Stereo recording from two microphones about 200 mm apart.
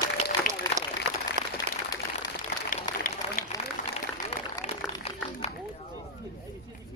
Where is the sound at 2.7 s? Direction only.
45° left (ahead or behind).